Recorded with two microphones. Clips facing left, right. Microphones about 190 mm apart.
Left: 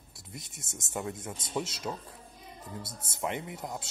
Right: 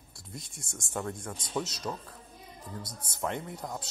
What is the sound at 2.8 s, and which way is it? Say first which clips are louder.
Speech: even; 25° left (ahead or behind).